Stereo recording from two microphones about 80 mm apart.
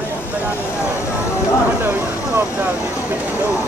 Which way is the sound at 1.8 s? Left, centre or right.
Right.